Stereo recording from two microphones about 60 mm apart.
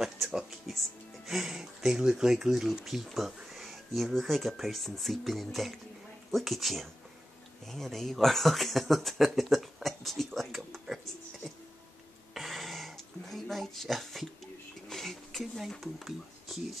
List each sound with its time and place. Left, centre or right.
0.0 s music: centre
1.2 s speech: centre
12.4 s a sound: centre
15.8 s speech: centre